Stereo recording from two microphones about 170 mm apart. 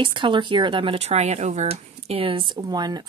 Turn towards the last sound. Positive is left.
turn(degrees=-25)  # may be behind; listen again after turning